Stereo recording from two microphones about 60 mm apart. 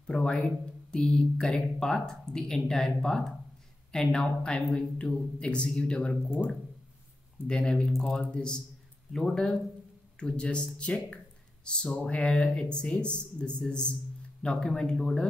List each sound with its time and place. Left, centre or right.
0.0 s speech: centre
7.4 s speech: centre
7.9 s speech: centre
8.2 s speech: left
9.1 s speech: centre